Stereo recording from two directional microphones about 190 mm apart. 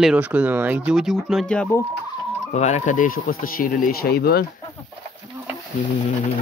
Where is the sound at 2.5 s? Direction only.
40° left (ahead or behind); by 4.4 s 55° left (ahead or behind).